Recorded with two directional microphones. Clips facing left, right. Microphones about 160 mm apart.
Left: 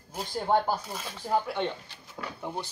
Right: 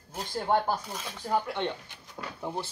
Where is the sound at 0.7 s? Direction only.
5° left (ahead or behind).